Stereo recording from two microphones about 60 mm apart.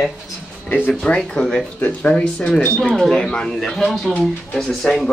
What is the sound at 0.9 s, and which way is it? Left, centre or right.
Speech, centre.